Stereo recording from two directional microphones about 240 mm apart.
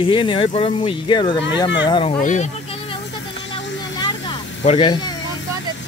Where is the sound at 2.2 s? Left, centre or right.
Left.